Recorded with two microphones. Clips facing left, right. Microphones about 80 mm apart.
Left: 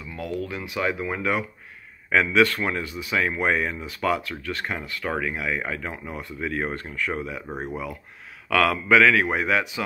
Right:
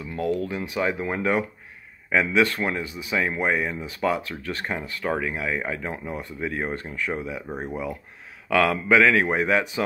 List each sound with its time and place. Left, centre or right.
0.1 s speech: right
0.6 s speech: right
2.0 s speech: centre
7.4 s speech: centre
8.5 s speech: right